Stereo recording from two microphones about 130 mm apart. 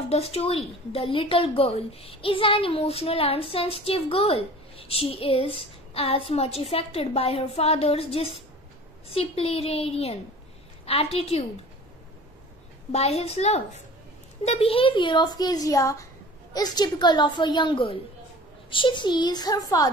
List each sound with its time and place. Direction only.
0.1 s a woman's voice: 50° left (ahead or behind)
12.9 s a woman's voice: 55° left (ahead or behind); by 19.9 s 30° left (ahead or behind)